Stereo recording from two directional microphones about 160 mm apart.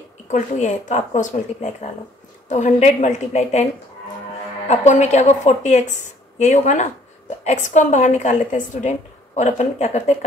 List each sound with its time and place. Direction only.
0.3 s a woman's voice: 45° left (ahead or behind)
4.6 s a woman's voice: 45° left (ahead or behind)